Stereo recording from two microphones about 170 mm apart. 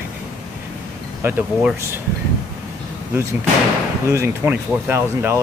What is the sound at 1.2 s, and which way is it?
Speech, 15° right (ahead or behind).